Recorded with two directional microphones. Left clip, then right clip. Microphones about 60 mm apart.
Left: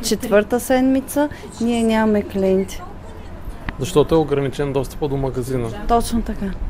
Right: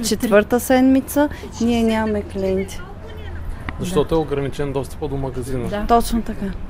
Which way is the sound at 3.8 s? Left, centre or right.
Left.